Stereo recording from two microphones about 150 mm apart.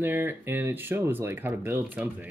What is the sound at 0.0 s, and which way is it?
Speech, 15° right (ahead or behind).